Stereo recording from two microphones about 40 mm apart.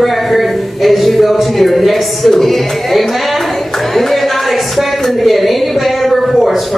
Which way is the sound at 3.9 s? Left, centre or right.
Centre.